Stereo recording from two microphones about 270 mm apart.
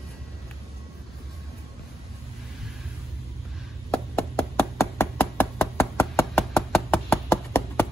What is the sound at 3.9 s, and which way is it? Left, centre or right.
Knock, centre.